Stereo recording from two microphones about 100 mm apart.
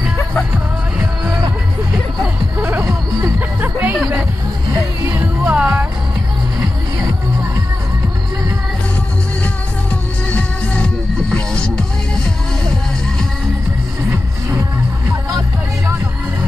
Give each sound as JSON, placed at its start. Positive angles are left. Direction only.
{"t": 2.6, "sound": "music", "side_deg": -30}
{"t": 3.3, "sound": "music", "side_deg": -20}
{"t": 5.4, "sound": "music", "side_deg": -10}
{"t": 10.3, "sound": "music", "side_deg": 10}